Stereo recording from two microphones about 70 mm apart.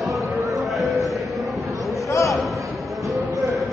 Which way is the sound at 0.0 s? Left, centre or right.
Centre.